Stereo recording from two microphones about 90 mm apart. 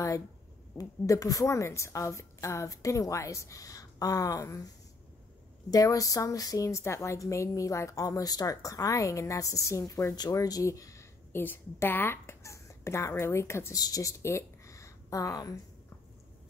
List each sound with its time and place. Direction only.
0.7 s a woman's voice: 40° left (ahead or behind)
5.7 s a woman's voice: 40° left (ahead or behind)
11.3 s speech: 25° left (ahead or behind)
13.7 s speech: 45° left (ahead or behind)